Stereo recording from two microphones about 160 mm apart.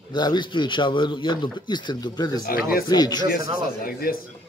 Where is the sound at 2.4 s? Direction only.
65° left (ahead or behind).